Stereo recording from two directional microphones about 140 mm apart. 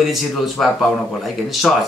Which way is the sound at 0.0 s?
Centre (ahead or behind).